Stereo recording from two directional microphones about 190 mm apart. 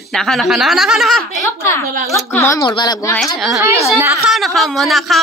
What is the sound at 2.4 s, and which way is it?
Speech, 15° left (ahead or behind).